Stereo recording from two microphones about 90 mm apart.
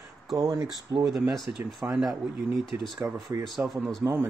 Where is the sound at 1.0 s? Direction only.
Centre (ahead or behind).